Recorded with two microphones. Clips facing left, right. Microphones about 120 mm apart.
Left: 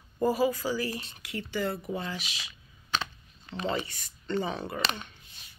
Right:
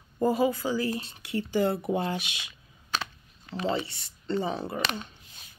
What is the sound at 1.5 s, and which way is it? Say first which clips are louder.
Speech: right 5 dB; 45° right (ahead or behind).